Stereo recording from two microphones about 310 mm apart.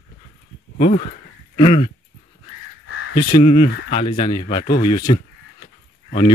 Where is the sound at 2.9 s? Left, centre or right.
Left.